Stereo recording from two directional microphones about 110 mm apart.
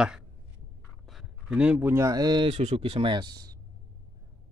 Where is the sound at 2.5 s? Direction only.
90° right.